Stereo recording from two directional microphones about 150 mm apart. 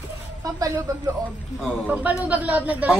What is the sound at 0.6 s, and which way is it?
Speech, 20° right (ahead or behind).